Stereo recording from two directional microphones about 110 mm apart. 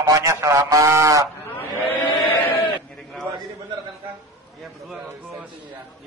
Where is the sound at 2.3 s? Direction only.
15° left (ahead or behind).